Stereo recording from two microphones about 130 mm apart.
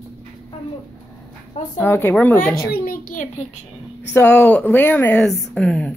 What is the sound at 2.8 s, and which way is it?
Speech, 90° left.